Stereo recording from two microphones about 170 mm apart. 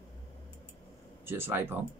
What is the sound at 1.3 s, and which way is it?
Speech, 15° right (ahead or behind).